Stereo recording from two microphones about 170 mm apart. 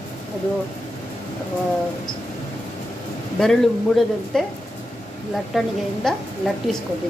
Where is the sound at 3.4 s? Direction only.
Centre (ahead or behind).